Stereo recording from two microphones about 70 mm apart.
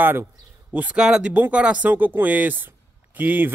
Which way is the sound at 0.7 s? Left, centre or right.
Right.